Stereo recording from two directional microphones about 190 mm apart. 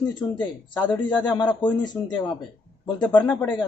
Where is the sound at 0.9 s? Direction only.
10° left (ahead or behind).